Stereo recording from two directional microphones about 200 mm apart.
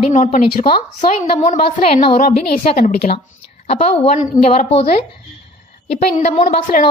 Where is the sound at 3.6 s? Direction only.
30° left (ahead or behind).